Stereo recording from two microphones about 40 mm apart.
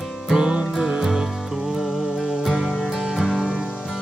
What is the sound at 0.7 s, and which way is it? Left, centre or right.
Music, centre.